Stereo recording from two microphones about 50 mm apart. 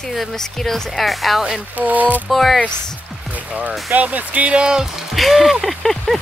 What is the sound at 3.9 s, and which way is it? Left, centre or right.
Speech, right.